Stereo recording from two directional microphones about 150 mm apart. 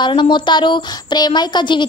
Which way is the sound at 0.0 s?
30° left (ahead or behind).